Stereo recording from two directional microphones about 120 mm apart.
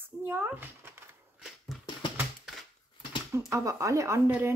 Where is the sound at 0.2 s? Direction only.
20° right (ahead or behind).